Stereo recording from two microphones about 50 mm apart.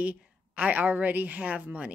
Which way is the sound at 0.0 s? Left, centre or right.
Right.